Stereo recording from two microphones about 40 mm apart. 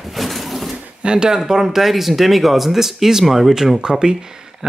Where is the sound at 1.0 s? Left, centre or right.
Right.